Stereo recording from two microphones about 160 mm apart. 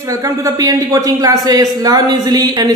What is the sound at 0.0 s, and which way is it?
Speech, 20° right (ahead or behind).